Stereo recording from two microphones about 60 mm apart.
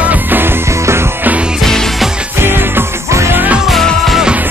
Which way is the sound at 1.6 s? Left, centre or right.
Centre.